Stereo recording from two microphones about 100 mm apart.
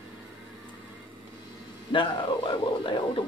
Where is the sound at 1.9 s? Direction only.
55° left (ahead or behind).